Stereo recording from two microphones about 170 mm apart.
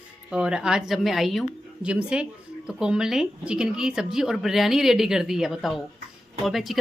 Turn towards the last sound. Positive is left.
turn(degrees=0)  # may be behind; listen again after turning